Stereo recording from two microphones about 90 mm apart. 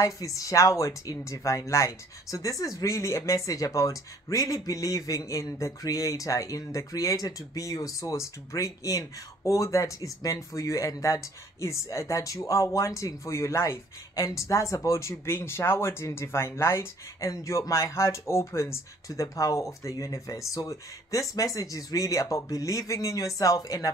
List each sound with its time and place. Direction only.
0.0 s speech: 40° left (ahead or behind)